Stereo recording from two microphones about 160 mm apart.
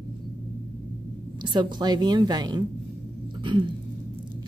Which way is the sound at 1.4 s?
30° right (ahead or behind).